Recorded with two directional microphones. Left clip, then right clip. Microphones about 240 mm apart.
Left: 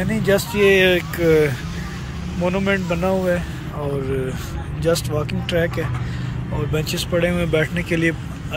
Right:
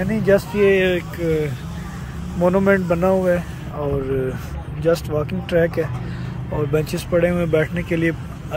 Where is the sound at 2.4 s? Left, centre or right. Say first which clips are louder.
Right 4 dB; right.